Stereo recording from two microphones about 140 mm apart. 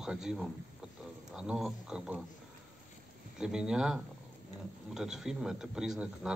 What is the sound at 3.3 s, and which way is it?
A man's voice, 5° right (ahead or behind).